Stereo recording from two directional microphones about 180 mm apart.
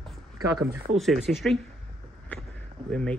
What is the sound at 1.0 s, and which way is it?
Speech, centre (ahead or behind).